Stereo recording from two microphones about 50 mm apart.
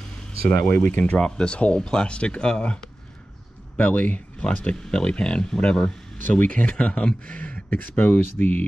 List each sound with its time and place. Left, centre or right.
0.5 s speech: left
1.2 s speech: centre; by 8.6 s left